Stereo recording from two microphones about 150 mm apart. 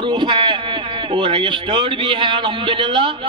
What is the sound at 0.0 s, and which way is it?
A man's voice, 30° right (ahead or behind).